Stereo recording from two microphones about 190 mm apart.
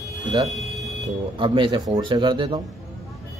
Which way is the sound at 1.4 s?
25° right (ahead or behind).